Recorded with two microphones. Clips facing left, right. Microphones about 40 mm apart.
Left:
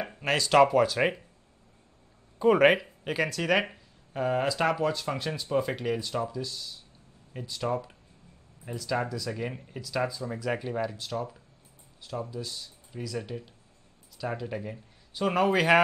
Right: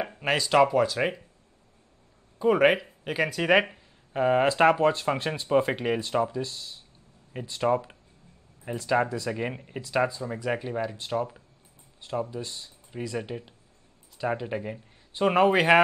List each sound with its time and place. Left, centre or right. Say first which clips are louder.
0.2 s speech: even; centre
2.3 s speech: even; centre
11.0 s speech: right 4 dB; right